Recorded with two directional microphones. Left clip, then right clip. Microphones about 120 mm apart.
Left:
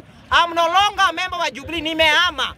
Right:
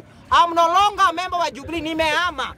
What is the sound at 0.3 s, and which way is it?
A man's voice, 5° right (ahead or behind).